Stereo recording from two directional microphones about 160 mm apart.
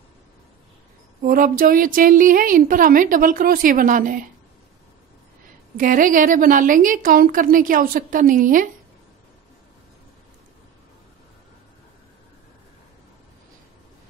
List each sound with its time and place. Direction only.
1.2 s a woman's voice: 60° right (ahead or behind)
5.8 s a woman's voice: 55° right (ahead or behind)